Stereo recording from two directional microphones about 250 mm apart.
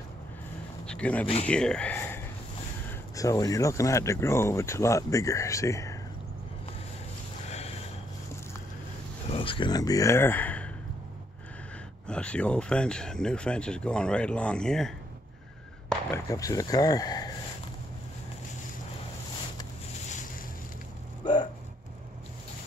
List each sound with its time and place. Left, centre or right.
0.8 s a sound: centre
1.2 s speech: left
1.5 s speech: centre
7.4 s a sound: left
9.3 s speech: left
12.1 s speech: centre
21.2 s hiccup: centre